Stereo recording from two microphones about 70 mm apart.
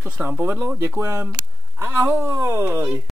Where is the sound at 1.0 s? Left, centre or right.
Right.